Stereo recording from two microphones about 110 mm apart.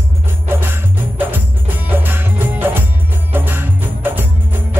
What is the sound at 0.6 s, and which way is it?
Music, 20° right (ahead or behind).